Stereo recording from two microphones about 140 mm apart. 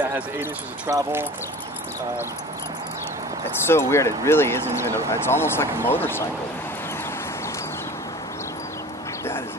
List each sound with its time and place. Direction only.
0.0 s speech: 15° right (ahead or behind)
3.6 s speech: 20° left (ahead or behind)